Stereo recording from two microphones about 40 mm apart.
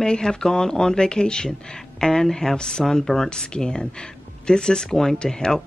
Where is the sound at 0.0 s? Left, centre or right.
Centre.